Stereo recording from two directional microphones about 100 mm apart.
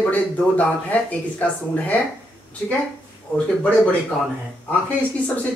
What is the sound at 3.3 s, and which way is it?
Speech, 10° left (ahead or behind).